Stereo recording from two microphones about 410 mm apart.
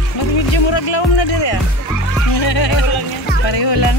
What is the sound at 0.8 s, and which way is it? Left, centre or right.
Speech, left.